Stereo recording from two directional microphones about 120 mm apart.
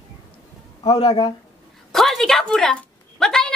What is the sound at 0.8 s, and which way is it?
Speech, 40° left (ahead or behind).